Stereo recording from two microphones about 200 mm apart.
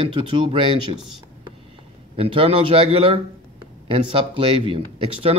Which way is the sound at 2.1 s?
30° right (ahead or behind).